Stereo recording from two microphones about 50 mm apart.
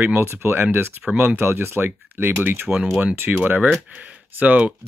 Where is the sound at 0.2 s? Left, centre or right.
Right.